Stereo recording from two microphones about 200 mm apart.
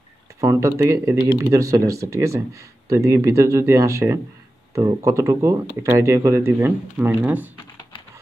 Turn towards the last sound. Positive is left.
turn(degrees=-10)  # may be behind; listen again after turning